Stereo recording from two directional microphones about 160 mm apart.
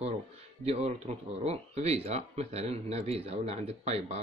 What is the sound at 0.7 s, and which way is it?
Speech, 40° right (ahead or behind).